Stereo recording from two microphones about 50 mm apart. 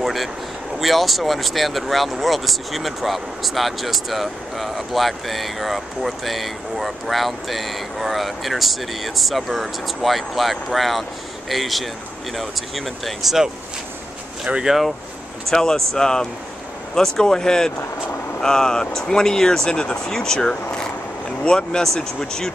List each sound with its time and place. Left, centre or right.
0.0 s a sound: centre
0.7 s speech: centre
14.4 s speech: centre
15.5 s speech: centre
21.5 s speech: centre